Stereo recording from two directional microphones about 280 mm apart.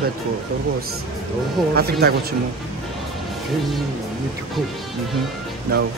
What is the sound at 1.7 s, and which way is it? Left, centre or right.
Speech, right.